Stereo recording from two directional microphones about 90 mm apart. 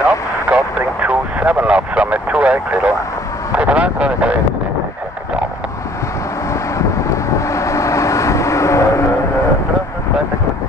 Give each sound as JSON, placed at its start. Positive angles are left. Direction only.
{"t": 0.0, "sound": "vehicle", "side_deg": -15}
{"t": 6.5, "sound": "vehicle", "side_deg": 35}